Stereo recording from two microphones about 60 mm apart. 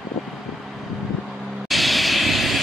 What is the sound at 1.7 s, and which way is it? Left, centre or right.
Vehicle, centre.